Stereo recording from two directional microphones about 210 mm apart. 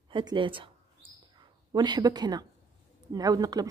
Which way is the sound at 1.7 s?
20° right (ahead or behind).